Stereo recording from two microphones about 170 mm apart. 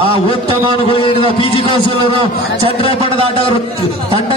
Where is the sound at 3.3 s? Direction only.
35° left (ahead or behind).